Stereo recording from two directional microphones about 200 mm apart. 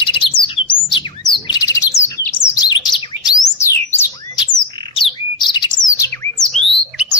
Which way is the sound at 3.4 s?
15° left (ahead or behind).